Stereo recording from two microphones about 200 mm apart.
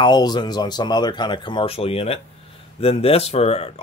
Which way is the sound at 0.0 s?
20° left (ahead or behind).